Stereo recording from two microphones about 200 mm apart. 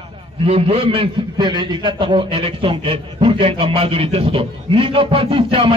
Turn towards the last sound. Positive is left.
turn(degrees=-25)  # may be behind; listen again after turning